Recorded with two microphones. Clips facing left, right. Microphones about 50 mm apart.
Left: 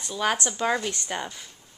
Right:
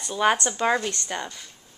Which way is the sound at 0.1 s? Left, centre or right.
Centre.